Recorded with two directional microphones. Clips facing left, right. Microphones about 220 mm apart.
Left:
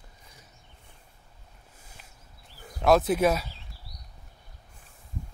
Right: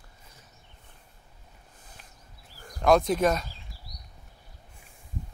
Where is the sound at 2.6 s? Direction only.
5° left (ahead or behind).